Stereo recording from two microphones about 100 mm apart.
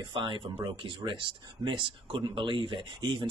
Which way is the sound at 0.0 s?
50° right (ahead or behind).